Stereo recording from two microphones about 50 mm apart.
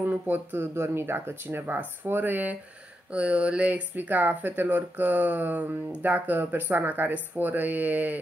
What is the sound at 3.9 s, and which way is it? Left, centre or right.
Speech, right.